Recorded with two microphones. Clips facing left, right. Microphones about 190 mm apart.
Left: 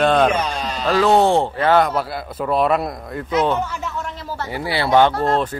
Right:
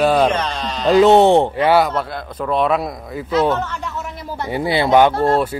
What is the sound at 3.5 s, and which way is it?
Speech, 10° left (ahead or behind).